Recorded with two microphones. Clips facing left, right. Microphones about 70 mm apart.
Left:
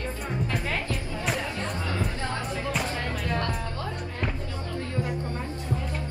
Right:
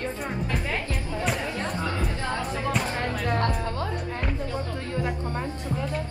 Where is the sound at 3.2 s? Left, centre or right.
Right.